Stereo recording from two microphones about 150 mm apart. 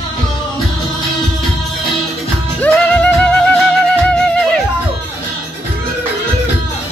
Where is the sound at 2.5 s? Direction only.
10° left (ahead or behind).